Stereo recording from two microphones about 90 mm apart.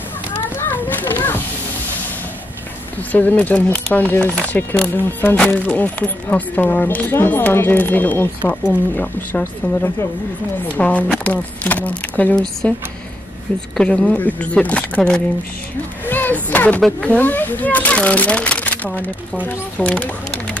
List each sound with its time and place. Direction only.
0.3 s children playing: 25° left (ahead or behind)
3.0 s speech: 20° left (ahead or behind)
13.7 s speech: 10° left (ahead or behind)
16.1 s speech: 20° left (ahead or behind)